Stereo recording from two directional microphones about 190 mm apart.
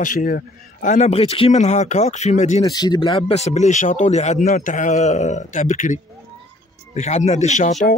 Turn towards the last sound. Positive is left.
turn(degrees=40)  # may be behind; listen again after turning